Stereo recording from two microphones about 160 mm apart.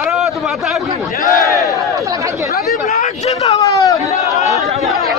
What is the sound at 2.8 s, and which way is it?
Speech, 45° left (ahead or behind).